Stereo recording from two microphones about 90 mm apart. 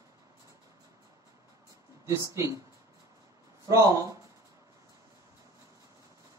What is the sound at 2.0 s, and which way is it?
Speech, 35° right (ahead or behind).